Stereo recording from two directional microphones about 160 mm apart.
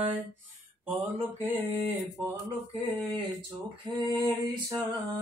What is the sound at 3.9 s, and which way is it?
Mantra, 25° right (ahead or behind).